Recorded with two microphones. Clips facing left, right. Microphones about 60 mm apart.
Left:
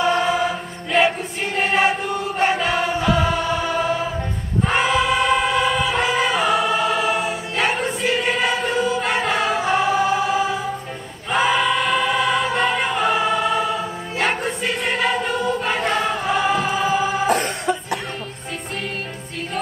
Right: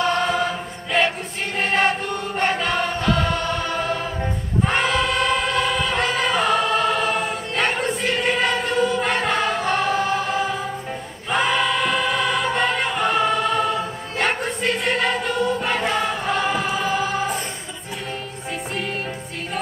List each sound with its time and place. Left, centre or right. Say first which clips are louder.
0.0 s choir: left 2 dB; centre
17.3 s music: left 8 dB; left